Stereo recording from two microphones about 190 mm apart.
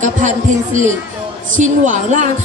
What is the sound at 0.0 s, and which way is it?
A woman's voice, 40° right (ahead or behind).